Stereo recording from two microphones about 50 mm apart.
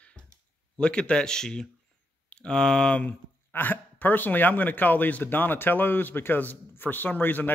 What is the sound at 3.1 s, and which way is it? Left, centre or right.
Speech, left.